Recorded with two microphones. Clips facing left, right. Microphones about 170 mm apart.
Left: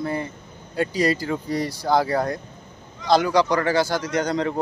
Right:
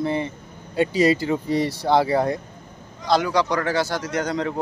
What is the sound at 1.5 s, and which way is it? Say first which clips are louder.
Speech: right 2 dB; 25° right (ahead or behind).